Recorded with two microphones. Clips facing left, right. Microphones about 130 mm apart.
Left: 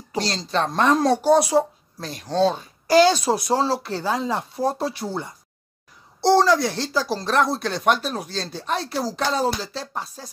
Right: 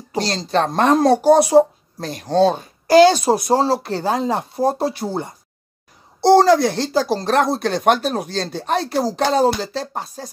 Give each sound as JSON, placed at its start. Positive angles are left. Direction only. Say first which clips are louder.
{"t": 0.1, "sound": "speech", "louder": "right 4 dB", "side_deg": -55}
{"t": 6.3, "sound": "speech", "louder": "right 6 dB", "side_deg": -50}